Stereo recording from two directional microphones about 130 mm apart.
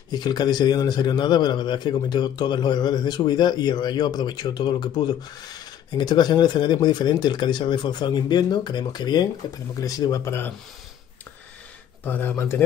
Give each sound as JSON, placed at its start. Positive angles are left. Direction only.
{"t": 0.1, "sound": "a man's voice", "side_deg": 35}
{"t": 12.0, "sound": "speech", "side_deg": 15}